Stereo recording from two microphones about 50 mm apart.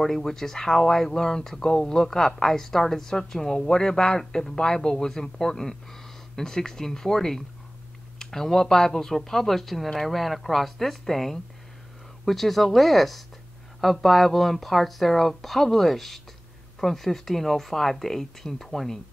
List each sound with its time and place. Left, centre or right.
0.0 s speech: centre